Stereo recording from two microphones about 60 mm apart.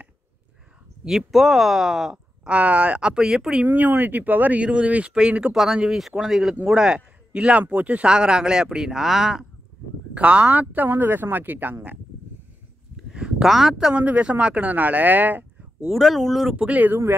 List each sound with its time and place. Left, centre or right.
1.0 s speech: centre
2.4 s speech: right
3.6 s speech: right; by 5.5 s centre
5.5 s a man's voice: centre
10.1 s speech: right
13.1 s a sound: centre
13.5 s speech: centre
13.9 s speech: right
15.9 s speech: centre
16.5 s speech: right